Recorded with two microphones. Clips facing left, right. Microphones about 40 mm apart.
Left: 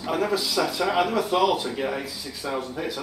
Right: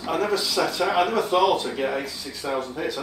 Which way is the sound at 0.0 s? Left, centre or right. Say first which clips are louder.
Right 1 dB; centre.